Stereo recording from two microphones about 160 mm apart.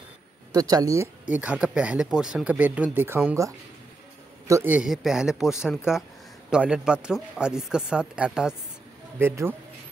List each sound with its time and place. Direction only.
0.5 s speech: 25° right (ahead or behind)
1.3 s speech: 5° right (ahead or behind)
4.5 s speech: 15° right (ahead or behind)